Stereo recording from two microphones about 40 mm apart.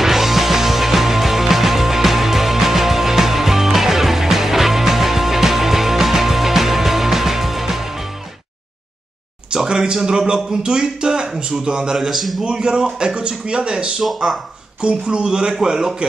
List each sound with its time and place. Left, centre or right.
0.0 s music: centre
9.5 s speech: centre
12.4 s speech: right
14.0 s speech: centre
14.8 s speech: right